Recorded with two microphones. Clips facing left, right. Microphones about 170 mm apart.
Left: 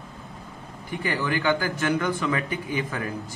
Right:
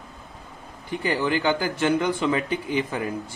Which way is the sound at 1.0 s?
25° right (ahead or behind).